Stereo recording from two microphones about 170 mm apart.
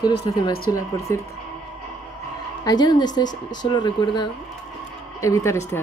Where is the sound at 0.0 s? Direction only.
25° left (ahead or behind).